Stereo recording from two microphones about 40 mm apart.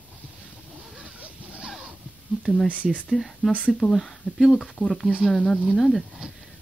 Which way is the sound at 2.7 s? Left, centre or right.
Right.